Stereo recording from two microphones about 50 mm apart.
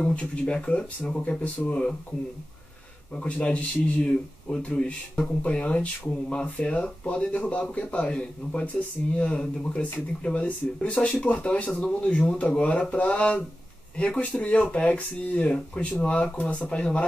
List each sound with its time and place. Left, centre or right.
0.0 s speech: left
3.2 s speech: left